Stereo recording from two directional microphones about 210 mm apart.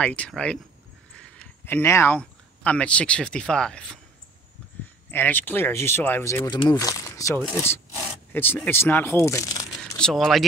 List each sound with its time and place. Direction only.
0.0 s speech: 5° left (ahead or behind)
5.1 s speech: 10° left (ahead or behind)
9.7 s speech: centre (ahead or behind)